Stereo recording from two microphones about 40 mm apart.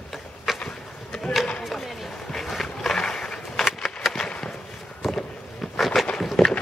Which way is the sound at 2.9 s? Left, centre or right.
Centre.